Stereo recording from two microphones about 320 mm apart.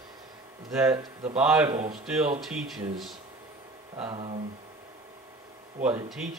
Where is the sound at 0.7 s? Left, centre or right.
Centre.